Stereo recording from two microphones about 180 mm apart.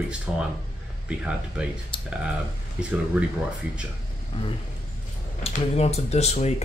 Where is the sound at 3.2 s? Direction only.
10° right (ahead or behind).